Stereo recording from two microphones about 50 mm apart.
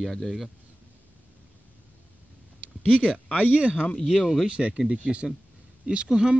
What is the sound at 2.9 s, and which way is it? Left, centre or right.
Speech, right.